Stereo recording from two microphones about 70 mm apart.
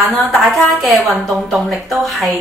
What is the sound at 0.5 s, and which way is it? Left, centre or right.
Speech, centre.